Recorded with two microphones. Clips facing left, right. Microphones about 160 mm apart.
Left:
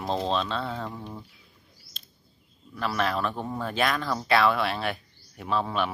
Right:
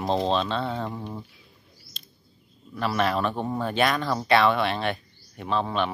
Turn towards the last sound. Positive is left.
turn(degrees=5)  # may be behind; listen again after turning